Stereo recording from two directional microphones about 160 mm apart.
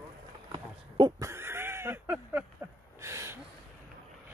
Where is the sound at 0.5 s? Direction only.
30° right (ahead or behind).